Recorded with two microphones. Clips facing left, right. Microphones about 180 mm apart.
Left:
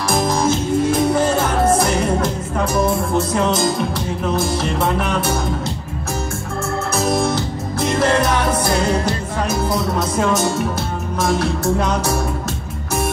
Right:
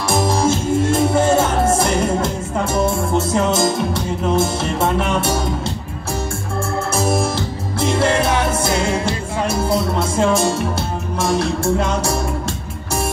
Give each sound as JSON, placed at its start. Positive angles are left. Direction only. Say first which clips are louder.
{"t": 0.1, "sound": "music", "louder": "right 1 dB", "side_deg": -25}
{"t": 6.9, "sound": "organ", "louder": "even", "side_deg": -25}
{"t": 7.8, "sound": "music", "louder": "even", "side_deg": -25}
{"t": 9.0, "sound": "speech", "louder": "even", "side_deg": -30}
{"t": 11.1, "sound": "music", "louder": "even", "side_deg": -25}